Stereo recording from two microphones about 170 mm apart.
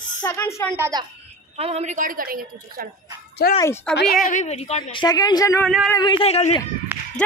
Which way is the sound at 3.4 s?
65° left (ahead or behind).